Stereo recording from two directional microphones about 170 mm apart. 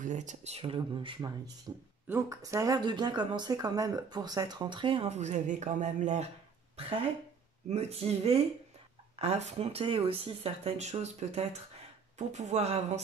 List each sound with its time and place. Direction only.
0.0 s speech: 45° right (ahead or behind); by 1.5 s 25° right (ahead or behind)
2.0 s speech: 15° right (ahead or behind); by 6.2 s 45° right (ahead or behind)
6.8 s speech: 35° right (ahead or behind)